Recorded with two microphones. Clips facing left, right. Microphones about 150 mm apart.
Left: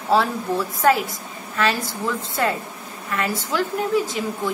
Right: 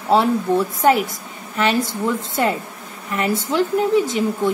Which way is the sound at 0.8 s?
25° right (ahead or behind).